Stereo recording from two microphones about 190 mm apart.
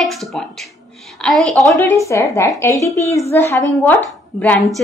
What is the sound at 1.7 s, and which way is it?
A woman's voice, 15° left (ahead or behind).